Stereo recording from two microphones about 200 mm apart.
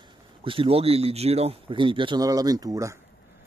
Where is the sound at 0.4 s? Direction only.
25° right (ahead or behind).